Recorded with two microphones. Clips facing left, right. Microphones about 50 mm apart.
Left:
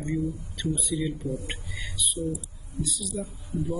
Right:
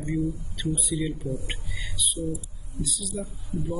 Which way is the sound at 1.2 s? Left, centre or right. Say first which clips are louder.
Even; right.